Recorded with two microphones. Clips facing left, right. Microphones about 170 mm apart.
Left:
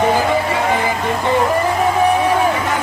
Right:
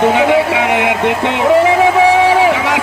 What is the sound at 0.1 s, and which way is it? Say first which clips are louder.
Music: right 5 dB; 75° right (ahead or behind).